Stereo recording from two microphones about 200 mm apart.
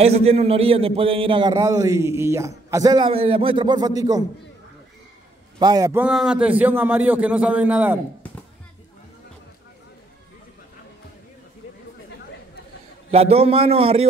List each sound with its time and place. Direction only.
0.0 s a man's voice: 30° right (ahead or behind)
5.6 s a man's voice: 20° right (ahead or behind)
6.0 s a man's voice: 5° right (ahead or behind)
13.1 s a man's voice: 30° right (ahead or behind)